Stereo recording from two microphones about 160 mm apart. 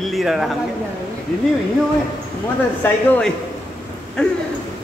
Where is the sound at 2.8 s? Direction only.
10° left (ahead or behind).